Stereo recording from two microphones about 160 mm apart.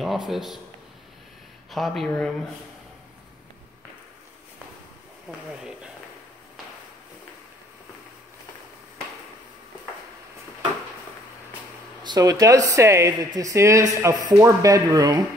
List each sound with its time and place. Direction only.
0.3 s speech: centre (ahead or behind)
1.7 s speech: centre (ahead or behind)
12.0 s speech: 25° right (ahead or behind)